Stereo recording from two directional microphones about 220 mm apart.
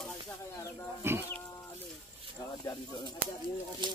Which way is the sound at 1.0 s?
10° right (ahead or behind).